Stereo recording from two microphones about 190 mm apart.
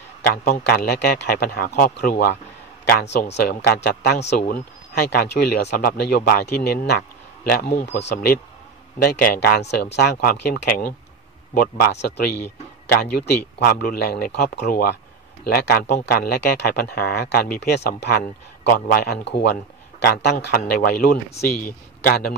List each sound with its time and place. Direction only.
0.3 s a man's voice: 55° left (ahead or behind)